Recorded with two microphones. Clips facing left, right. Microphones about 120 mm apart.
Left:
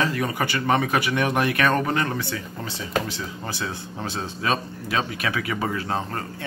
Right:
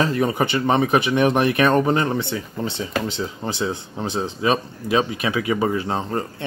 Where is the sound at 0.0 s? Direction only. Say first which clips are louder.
Right 5 dB; 25° right (ahead or behind).